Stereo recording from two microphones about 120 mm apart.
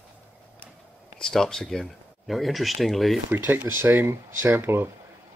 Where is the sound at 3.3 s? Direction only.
15° right (ahead or behind).